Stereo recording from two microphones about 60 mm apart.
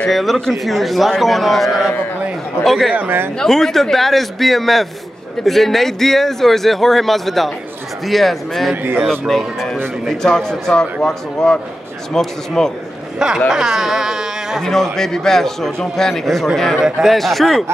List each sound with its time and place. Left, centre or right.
0.1 s speech: centre
2.9 s speech: right
3.3 s speech: centre
8.8 s speech: right
9.3 s a man's voice: centre
13.5 s speech: centre
14.6 s a man's voice: centre